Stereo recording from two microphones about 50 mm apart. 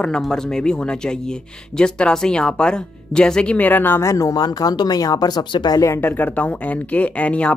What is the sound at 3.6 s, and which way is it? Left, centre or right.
Speech, left.